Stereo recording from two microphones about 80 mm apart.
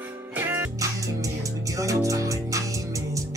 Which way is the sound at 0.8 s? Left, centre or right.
Right.